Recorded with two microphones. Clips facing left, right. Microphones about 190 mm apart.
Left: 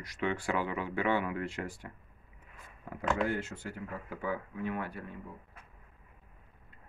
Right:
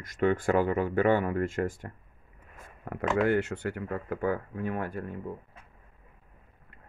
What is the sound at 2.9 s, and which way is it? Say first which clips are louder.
Speech: right 6 dB; 60° right (ahead or behind).